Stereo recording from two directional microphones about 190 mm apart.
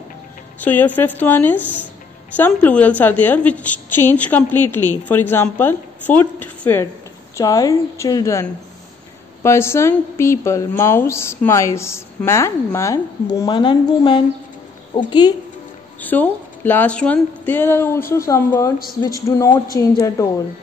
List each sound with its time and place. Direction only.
0.6 s a woman's voice: 10° left (ahead or behind)
16.0 s a woman's voice: 10° left (ahead or behind)